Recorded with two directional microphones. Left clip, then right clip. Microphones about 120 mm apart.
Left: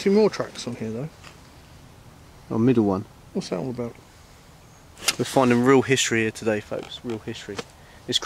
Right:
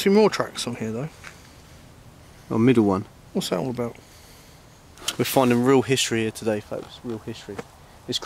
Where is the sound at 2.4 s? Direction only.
15° right (ahead or behind).